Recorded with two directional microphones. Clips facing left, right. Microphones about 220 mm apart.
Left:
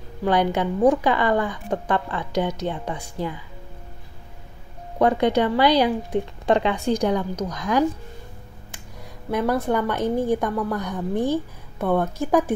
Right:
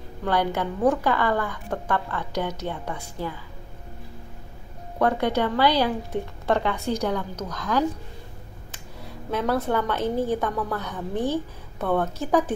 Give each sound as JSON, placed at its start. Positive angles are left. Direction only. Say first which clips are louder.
{"t": 0.2, "sound": "a woman's voice", "louder": "left 4 dB", "side_deg": 15}
{"t": 4.9, "sound": "a woman's voice", "louder": "left 4 dB", "side_deg": 15}
{"t": 9.3, "sound": "a woman's voice", "louder": "left 2 dB", "side_deg": 15}